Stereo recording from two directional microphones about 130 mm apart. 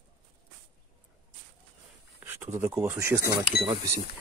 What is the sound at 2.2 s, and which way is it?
Speech, 20° right (ahead or behind).